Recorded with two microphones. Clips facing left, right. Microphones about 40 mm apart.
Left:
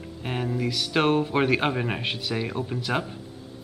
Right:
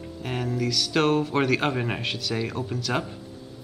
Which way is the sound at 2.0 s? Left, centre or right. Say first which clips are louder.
Even; centre.